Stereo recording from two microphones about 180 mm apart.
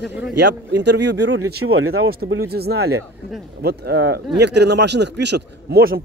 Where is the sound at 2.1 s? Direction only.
60° right (ahead or behind).